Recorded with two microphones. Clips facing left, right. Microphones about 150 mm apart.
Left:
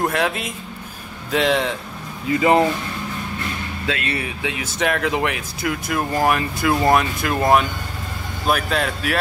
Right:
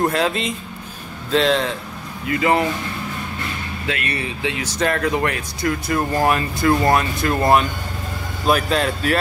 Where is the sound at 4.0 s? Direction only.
20° left (ahead or behind).